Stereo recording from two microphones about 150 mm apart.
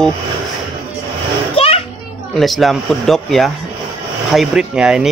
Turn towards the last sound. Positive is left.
turn(degrees=-5)  # may be behind; listen again after turning